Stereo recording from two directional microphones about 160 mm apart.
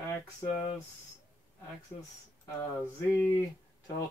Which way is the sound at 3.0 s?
10° left (ahead or behind).